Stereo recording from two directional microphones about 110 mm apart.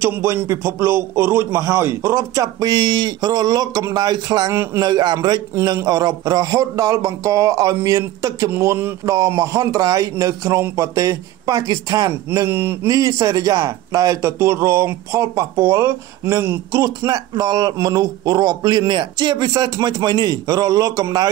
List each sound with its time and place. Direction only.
0.0 s a man's voice: 25° right (ahead or behind)
12.4 s a man's voice: 20° right (ahead or behind)
12.9 s a man's voice: 30° right (ahead or behind)